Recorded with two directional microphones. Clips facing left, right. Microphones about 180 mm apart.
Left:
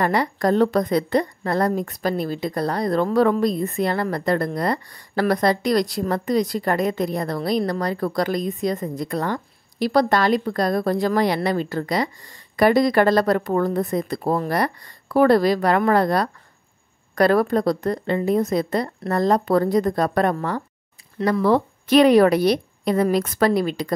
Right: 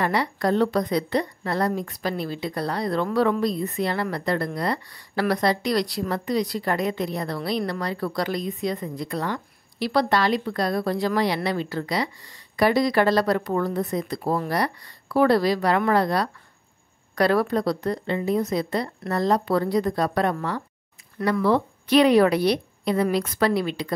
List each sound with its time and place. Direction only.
0.0 s a woman's voice: 45° left (ahead or behind)